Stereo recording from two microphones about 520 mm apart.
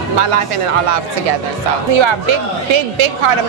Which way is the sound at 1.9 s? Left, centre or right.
Right.